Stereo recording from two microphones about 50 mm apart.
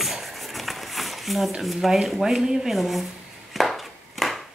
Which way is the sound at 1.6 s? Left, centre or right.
Centre.